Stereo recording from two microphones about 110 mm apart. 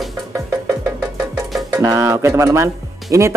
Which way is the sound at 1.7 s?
30° right (ahead or behind).